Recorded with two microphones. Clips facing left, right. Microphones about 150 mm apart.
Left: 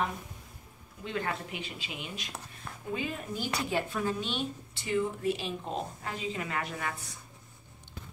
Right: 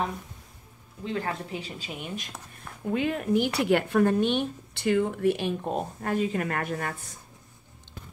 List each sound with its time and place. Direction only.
1.0 s speech: 35° right (ahead or behind); by 2.3 s 50° right (ahead or behind)
2.9 s a woman's voice: 65° right (ahead or behind); by 7.1 s 45° right (ahead or behind)